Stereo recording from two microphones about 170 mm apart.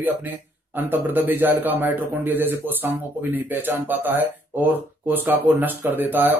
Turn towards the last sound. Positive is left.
turn(degrees=-10)  # may be behind; listen again after turning